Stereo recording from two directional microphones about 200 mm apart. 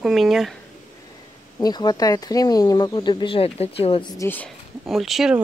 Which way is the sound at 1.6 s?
20° left (ahead or behind).